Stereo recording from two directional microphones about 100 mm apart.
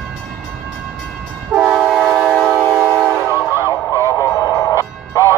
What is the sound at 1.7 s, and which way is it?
Train, 5° right (ahead or behind).